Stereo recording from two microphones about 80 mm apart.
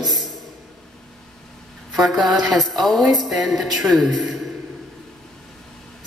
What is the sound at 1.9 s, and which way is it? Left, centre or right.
A man's voice, centre.